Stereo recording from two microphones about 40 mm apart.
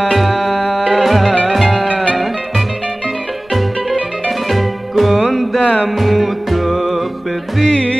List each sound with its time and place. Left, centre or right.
0.1 s music: centre
4.5 s music: centre
7.7 s music: left